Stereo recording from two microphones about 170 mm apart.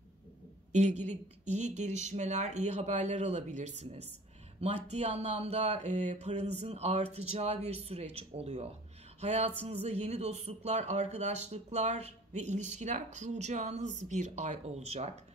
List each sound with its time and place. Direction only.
0.7 s speech: 45° right (ahead or behind)